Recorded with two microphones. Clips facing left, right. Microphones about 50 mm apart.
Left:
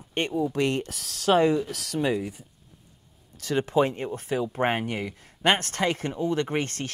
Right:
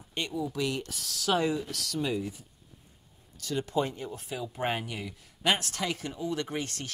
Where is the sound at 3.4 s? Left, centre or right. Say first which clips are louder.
Left 7 dB; left.